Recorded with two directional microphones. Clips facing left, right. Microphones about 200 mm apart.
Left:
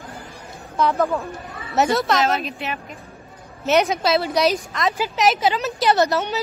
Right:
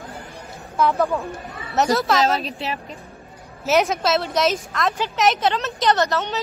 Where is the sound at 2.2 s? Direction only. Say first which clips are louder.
Right 1 dB; 35° right (ahead or behind).